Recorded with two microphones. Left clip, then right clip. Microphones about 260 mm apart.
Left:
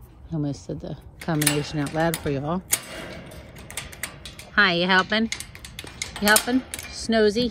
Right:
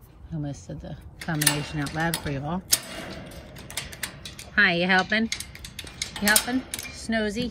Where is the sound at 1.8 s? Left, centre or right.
Centre.